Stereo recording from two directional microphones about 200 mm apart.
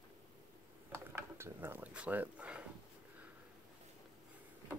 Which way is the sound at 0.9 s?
15° right (ahead or behind).